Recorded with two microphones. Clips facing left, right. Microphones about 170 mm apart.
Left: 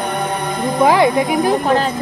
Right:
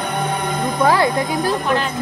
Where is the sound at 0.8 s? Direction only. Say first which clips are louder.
Left 4 dB; 20° left (ahead or behind).